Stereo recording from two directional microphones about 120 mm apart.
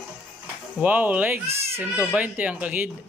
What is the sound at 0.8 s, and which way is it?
Speech, 15° right (ahead or behind).